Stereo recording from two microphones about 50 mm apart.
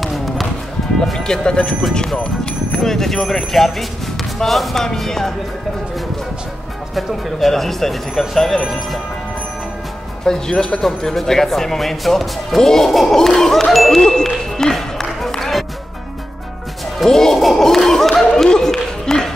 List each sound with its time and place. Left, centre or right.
0.0 s music: centre
1.0 s speech: centre
2.1 s speech: left
2.8 s speech: centre
7.0 s speech: centre
10.2 s speech: centre
17.0 s speech: centre
18.1 s a sound: centre